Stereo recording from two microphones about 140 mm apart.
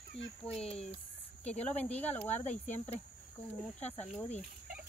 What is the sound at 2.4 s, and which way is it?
Speech, 55° left (ahead or behind).